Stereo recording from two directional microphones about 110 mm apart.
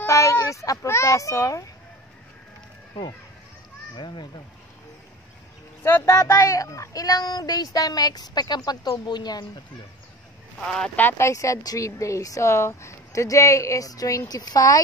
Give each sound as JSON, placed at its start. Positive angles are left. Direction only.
{"t": 0.0, "sound": "speech", "side_deg": 30}
{"t": 3.9, "sound": "speech", "side_deg": 45}
{"t": 5.9, "sound": "speech", "side_deg": 25}
{"t": 10.6, "sound": "speech", "side_deg": 5}
{"t": 11.0, "sound": "speech", "side_deg": 20}